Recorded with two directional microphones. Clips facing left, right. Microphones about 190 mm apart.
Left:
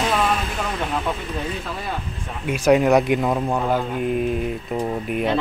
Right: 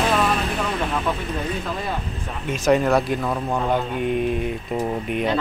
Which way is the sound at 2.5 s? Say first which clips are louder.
Left 2 dB; 10° left (ahead or behind).